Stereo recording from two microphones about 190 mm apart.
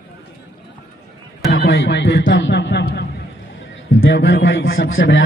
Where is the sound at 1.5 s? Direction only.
85° left; by 3.0 s 65° left (ahead or behind).